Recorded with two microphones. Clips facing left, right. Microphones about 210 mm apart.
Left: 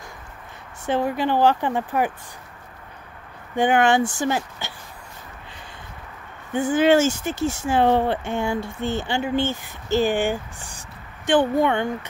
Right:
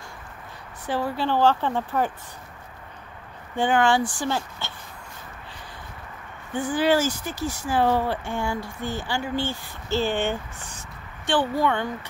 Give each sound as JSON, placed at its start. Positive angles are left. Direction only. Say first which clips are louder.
{"t": 0.8, "sound": "speech", "louder": "left 4 dB", "side_deg": 20}
{"t": 3.5, "sound": "speech", "louder": "left 3 dB", "side_deg": 20}
{"t": 6.7, "sound": "speech", "louder": "left 5 dB", "side_deg": 25}